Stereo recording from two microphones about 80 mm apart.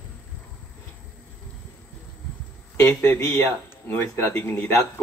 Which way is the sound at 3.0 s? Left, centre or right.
Left.